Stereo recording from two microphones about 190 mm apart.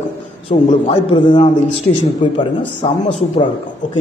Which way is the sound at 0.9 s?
25° left (ahead or behind).